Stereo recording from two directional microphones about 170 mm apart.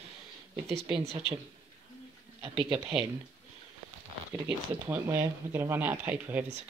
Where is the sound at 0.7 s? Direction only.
Centre (ahead or behind).